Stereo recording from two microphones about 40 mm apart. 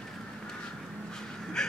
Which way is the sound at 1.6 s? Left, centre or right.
Centre.